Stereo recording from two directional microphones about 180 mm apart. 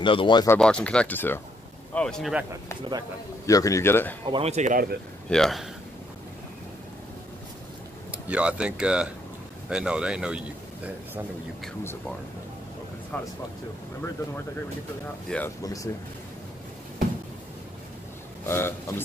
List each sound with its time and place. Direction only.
0.0 s speech: 25° left (ahead or behind)
0.6 s speech: 5° left (ahead or behind)
3.4 s speech: 20° left (ahead or behind)
4.3 s speech: 35° right (ahead or behind)
5.3 s speech: centre (ahead or behind)
8.1 s speech: 5° right (ahead or behind)
13.1 s speech: 10° left (ahead or behind)
15.2 s speech: 10° left (ahead or behind)
15.6 s speech: 20° left (ahead or behind)
18.4 s speech: 15° left (ahead or behind)